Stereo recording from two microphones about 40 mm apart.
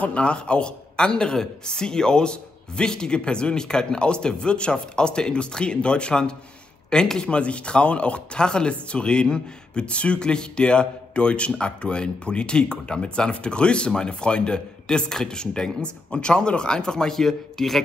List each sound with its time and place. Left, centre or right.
0.0 s speech: left; by 17.8 s centre